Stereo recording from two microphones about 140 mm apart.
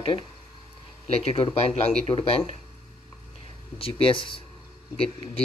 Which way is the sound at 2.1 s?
35° left (ahead or behind).